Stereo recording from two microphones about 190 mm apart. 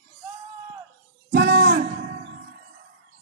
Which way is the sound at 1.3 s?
50° right (ahead or behind).